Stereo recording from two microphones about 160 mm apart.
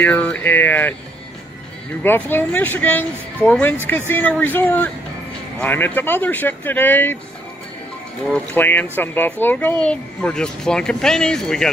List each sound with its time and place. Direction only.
0.0 s speech: 10° left (ahead or behind)
2.0 s speech: 10° left (ahead or behind)
8.3 s speech: 10° left (ahead or behind)